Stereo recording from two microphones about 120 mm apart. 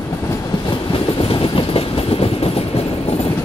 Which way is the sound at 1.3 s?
50° left (ahead or behind).